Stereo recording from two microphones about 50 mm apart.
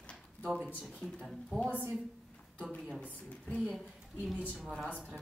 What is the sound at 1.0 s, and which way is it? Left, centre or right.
Speech, left.